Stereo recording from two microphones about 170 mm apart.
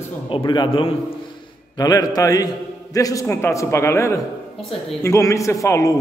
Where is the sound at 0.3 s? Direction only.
25° left (ahead or behind).